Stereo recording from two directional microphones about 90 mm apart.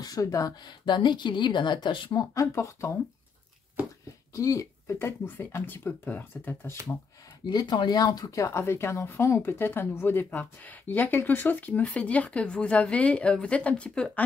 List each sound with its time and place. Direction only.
0.0 s speech: 40° left (ahead or behind)
0.7 s a woman's voice: 55° left (ahead or behind)
2.4 s speech: 35° left (ahead or behind)
4.3 s speech: 35° left (ahead or behind)
7.4 s speech: 55° left (ahead or behind); by 14.2 s 10° left (ahead or behind)